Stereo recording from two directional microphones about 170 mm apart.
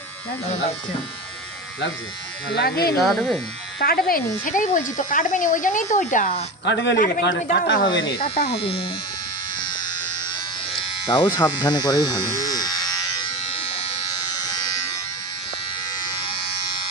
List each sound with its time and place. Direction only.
2.5 s speech: 70° left (ahead or behind)
3.0 s speech: centre (ahead or behind)
3.8 s speech: 60° left (ahead or behind); by 6.4 s 45° left (ahead or behind)
6.6 s a man's voice: 90° left
7.4 s speech: 80° left
7.9 s speech: 60° left (ahead or behind)
8.5 s speech: 35° left (ahead or behind)
9.6 s electric shaver: 25° left (ahead or behind)
14.4 s electric shaver: 20° left (ahead or behind)